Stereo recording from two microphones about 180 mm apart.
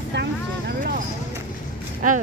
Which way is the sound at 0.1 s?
70° right (ahead or behind).